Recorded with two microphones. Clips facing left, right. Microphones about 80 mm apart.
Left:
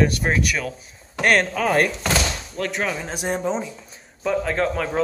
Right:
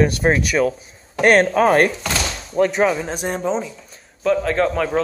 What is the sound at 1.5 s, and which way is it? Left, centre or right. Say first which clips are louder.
Speech: right 5 dB; right.